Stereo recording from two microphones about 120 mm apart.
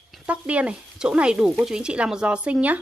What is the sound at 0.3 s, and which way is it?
Speech, 10° right (ahead or behind).